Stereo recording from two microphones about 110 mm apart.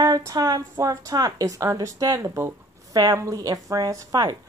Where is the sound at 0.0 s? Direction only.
35° right (ahead or behind).